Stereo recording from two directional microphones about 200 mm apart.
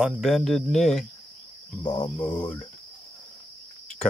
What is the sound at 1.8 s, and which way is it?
Cricket, 20° left (ahead or behind).